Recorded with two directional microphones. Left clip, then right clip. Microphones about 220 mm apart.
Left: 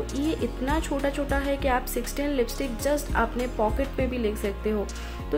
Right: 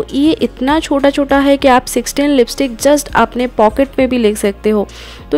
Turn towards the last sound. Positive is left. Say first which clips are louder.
# right 13 dB
turn(degrees=-40)  # may be behind; listen again after turning